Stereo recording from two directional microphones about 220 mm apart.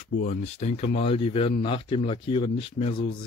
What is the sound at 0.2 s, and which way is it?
Speech, 30° left (ahead or behind).